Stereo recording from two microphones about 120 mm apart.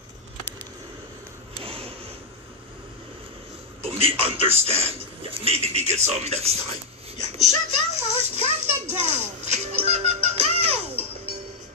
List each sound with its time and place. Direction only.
1.6 s a sound: 55° right (ahead or behind)
3.8 s a man's voice: 50° right (ahead or behind)
8.9 s music: 65° right (ahead or behind)